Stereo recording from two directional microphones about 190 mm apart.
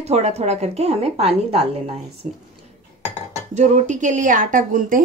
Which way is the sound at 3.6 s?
40° right (ahead or behind).